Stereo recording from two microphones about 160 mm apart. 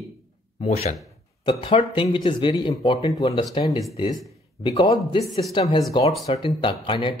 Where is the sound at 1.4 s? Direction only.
30° left (ahead or behind).